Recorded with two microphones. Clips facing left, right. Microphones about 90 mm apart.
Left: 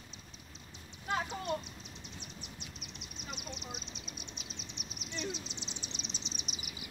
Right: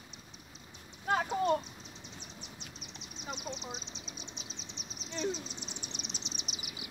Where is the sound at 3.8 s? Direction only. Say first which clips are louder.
Right 1 dB; 50° left (ahead or behind); by 5.9 s 90° left.